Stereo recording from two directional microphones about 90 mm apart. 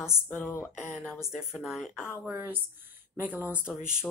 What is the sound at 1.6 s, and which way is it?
Speech, 5° right (ahead or behind).